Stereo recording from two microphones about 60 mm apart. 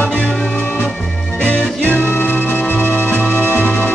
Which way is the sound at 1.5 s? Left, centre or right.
Left.